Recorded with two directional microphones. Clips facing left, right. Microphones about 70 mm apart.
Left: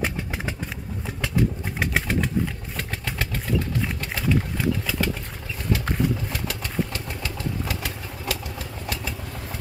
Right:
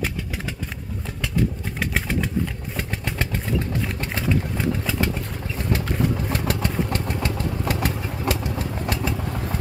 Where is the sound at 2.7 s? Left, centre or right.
Right.